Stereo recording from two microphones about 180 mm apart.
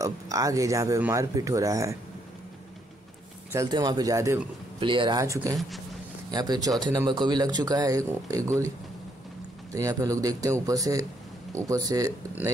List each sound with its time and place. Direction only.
0.0 s speech: 20° right (ahead or behind)
3.5 s speech: 20° right (ahead or behind)
4.7 s speech: 30° right (ahead or behind)
9.7 s speech: 20° right (ahead or behind)